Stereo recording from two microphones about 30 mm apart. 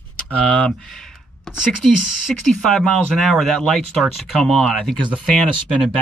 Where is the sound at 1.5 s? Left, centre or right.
Centre.